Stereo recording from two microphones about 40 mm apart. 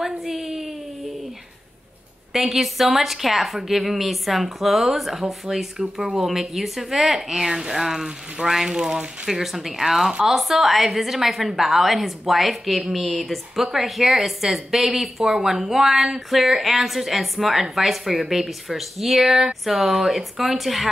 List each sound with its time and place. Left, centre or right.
0.0 s a sound: centre
2.3 s a woman's voice: centre
19.9 s speech: centre
20.2 s a woman's voice: centre